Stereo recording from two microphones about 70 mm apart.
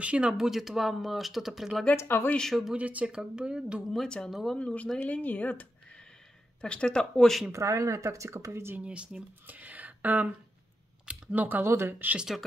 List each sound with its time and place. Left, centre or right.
0.0 s speech: centre
0.5 s speech: centre
2.0 s speech: left
2.7 s speech: right
3.9 s speech: centre
4.6 s speech: centre
5.0 s speech: left; by 7.4 s centre
7.5 s speech: right
8.7 s a woman's voice: centre
11.7 s speech: right